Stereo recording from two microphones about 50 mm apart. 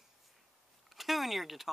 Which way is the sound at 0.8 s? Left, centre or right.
Centre.